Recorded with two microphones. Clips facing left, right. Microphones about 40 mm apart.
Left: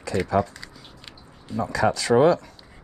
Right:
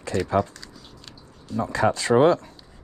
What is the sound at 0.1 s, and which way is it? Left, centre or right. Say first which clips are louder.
Speech: even; left.